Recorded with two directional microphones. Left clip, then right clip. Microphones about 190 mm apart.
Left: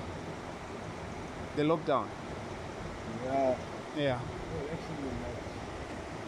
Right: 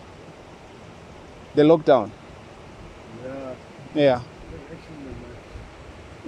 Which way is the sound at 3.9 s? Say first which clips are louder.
Right 14 dB; 65° right (ahead or behind).